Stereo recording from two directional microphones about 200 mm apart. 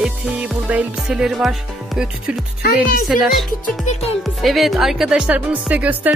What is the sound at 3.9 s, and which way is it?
Music, 30° left (ahead or behind).